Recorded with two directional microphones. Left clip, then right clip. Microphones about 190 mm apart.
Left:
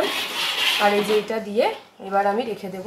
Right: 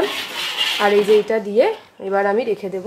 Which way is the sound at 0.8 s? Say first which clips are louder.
Right 9 dB; 45° right (ahead or behind).